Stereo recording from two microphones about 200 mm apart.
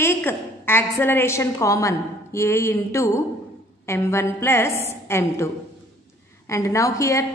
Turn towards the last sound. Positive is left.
turn(degrees=15)  # may be behind; listen again after turning